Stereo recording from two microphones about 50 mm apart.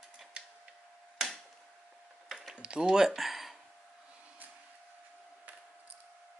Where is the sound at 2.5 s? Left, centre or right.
Right; by 3.6 s centre.